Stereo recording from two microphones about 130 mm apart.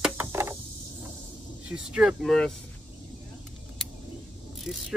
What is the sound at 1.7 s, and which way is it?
Speech, 5° right (ahead or behind).